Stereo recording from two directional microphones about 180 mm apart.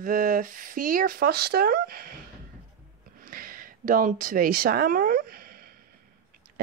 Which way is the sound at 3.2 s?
50° right (ahead or behind).